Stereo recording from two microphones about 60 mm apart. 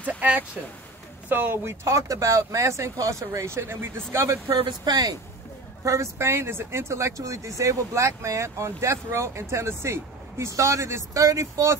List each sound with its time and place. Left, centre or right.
0.0 s a sound: right
1.3 s speech: right
1.9 s speech: right
3.5 s speech: right
5.9 s speech: right
10.5 s speech: right